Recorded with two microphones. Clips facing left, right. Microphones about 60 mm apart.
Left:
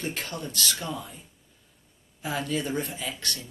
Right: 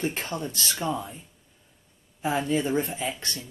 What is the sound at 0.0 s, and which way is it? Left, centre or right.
Speech, right.